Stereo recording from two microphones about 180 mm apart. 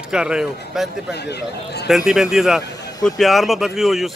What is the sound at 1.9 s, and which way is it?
Speech, 5° right (ahead or behind).